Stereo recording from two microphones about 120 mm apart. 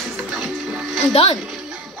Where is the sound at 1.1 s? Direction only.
55° left (ahead or behind).